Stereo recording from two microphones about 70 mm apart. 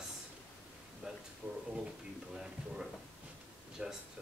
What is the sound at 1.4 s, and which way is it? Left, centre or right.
Speech, right.